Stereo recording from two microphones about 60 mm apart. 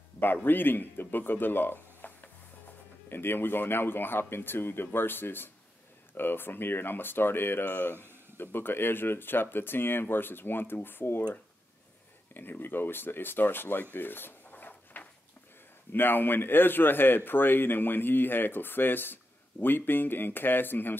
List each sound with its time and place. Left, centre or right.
0.2 s a man's voice: left
12.4 s a man's voice: left
13.9 s a sound: left
15.9 s a man's voice: left